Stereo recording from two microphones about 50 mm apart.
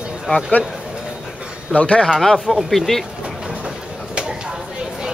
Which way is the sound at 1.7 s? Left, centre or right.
Left.